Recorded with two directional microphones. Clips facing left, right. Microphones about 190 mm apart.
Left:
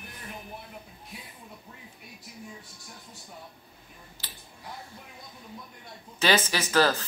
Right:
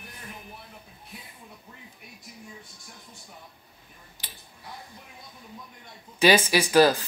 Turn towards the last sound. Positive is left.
turn(degrees=-15)  # may be behind; listen again after turning